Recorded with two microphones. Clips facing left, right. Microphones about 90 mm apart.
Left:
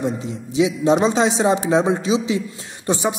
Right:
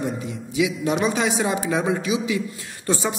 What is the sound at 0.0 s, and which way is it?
A man's voice, 25° left (ahead or behind).